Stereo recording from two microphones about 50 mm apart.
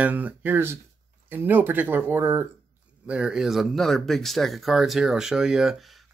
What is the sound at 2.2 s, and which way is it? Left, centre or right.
Speech, right.